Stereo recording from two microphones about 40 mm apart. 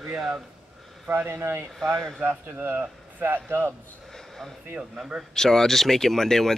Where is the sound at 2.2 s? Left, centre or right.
Right.